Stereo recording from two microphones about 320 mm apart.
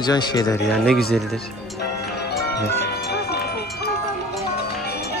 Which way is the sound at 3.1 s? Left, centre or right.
Left.